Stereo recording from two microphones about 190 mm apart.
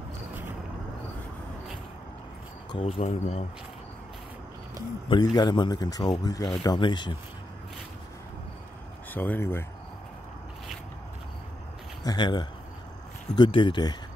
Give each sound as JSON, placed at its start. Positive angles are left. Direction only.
{"t": 2.7, "sound": "speech", "side_deg": 30}
{"t": 5.0, "sound": "a man's voice", "side_deg": 25}
{"t": 9.1, "sound": "speech", "side_deg": 10}
{"t": 12.0, "sound": "a man's voice", "side_deg": 20}